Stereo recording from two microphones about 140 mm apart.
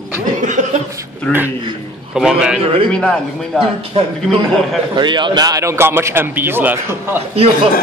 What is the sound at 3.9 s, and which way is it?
A man's voice, 40° right (ahead or behind).